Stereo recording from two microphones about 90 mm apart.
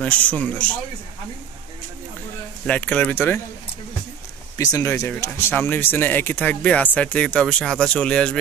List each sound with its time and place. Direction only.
0.0 s speech: 15° left (ahead or behind)
2.6 s speech: 15° left (ahead or behind)
4.6 s speech: 35° left (ahead or behind)
5.2 s speech: 25° left (ahead or behind); by 8.4 s 10° left (ahead or behind)